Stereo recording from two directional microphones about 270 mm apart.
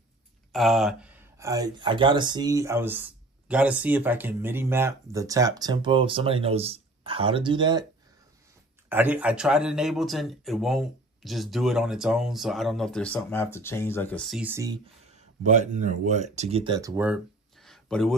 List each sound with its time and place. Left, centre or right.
0.5 s speech: centre
8.8 s speech: centre
15.0 s speech: right; by 18.1 s centre